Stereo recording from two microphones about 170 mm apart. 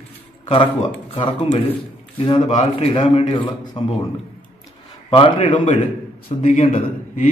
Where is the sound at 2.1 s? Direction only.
30° left (ahead or behind).